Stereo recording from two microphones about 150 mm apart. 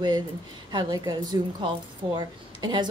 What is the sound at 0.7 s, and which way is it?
Speech, 30° right (ahead or behind).